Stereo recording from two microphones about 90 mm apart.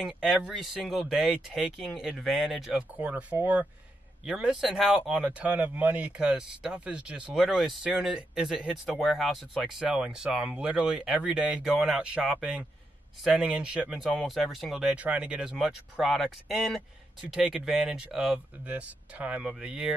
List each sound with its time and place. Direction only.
0.0 s speech: centre (ahead or behind)
3.0 s speech: 15° right (ahead or behind)
5.2 s speech: 15° right (ahead or behind)
7.3 s speech: centre (ahead or behind)
14.1 s speech: centre (ahead or behind)
15.5 s speech: centre (ahead or behind)